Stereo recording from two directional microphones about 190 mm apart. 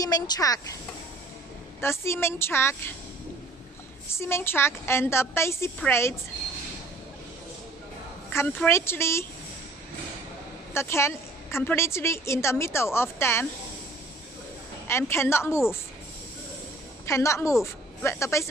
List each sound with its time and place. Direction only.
0.0 s speech: 20° left (ahead or behind)
1.8 s a woman's voice: 15° left (ahead or behind)
4.1 s a woman's voice: 15° left (ahead or behind)
8.3 s a woman's voice: 10° left (ahead or behind)
10.7 s a woman's voice: 15° left (ahead or behind)
14.9 s a woman's voice: 15° left (ahead or behind)
17.0 s a woman's voice: 15° left (ahead or behind)